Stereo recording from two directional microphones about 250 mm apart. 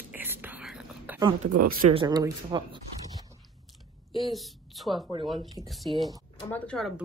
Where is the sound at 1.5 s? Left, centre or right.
Right.